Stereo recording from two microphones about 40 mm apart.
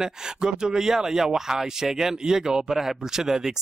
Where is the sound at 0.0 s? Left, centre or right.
Centre.